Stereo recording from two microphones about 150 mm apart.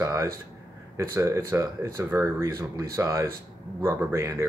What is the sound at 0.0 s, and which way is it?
Speech, 20° right (ahead or behind).